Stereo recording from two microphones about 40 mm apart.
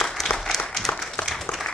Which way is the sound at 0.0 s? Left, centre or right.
Centre.